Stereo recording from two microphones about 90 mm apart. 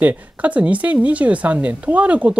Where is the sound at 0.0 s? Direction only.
15° right (ahead or behind).